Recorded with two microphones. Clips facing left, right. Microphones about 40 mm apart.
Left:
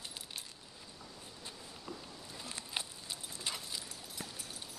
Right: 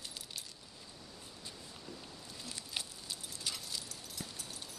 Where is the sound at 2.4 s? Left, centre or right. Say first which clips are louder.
Left 2 dB; left.